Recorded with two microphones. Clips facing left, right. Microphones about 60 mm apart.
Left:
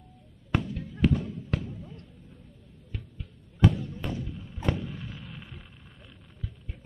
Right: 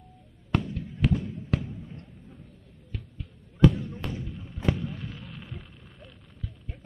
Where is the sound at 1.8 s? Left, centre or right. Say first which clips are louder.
Right 2 dB; right.